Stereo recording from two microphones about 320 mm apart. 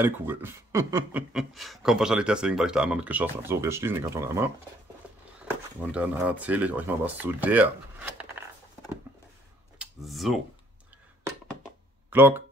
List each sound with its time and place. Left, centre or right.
0.0 s speech: centre
5.8 s speech: centre
9.8 s speech: centre
12.1 s speech: centre